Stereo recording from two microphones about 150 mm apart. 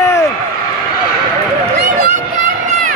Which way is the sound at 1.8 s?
90° right.